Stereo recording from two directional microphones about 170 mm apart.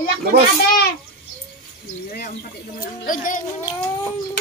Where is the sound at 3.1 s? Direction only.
50° left (ahead or behind).